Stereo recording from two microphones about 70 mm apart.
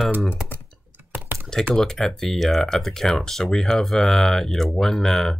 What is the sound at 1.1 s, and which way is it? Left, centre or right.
Typing, right.